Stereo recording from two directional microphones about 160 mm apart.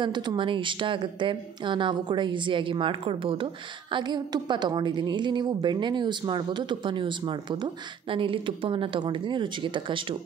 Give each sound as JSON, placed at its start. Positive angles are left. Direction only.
{"t": 0.0, "sound": "a woman's voice", "side_deg": -30}